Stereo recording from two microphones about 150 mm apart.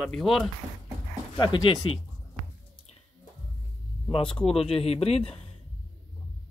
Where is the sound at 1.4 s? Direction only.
30° left (ahead or behind).